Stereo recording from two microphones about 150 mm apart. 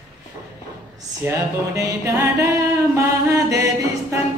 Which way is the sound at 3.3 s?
20° right (ahead or behind).